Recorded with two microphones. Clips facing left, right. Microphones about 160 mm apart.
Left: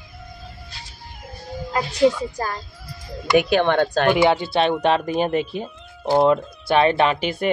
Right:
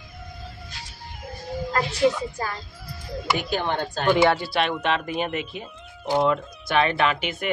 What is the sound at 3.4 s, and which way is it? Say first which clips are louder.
Speech: left 12 dB; 70° left (ahead or behind).